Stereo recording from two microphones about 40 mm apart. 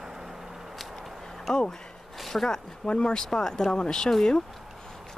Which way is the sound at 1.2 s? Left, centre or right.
Centre.